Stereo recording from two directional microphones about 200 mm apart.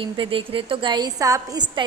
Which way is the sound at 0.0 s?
25° right (ahead or behind).